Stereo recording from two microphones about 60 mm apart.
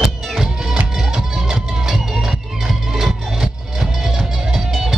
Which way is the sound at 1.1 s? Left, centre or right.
Centre.